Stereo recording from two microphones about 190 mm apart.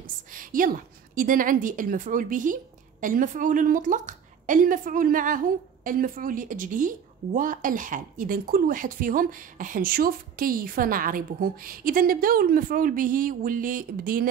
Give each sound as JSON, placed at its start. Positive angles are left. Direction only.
{"t": 0.3, "sound": "a woman's voice", "side_deg": -45}